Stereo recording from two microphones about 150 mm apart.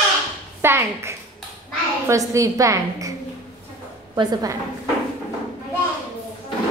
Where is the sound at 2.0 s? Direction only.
20° right (ahead or behind).